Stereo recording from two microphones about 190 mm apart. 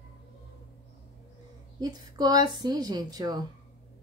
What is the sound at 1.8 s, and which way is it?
Speech, 20° right (ahead or behind).